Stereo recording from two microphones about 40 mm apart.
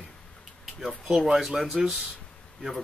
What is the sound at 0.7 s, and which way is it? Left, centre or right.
Speech, centre.